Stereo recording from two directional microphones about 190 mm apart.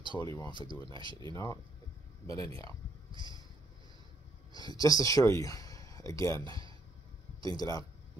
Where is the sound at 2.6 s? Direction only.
25° right (ahead or behind).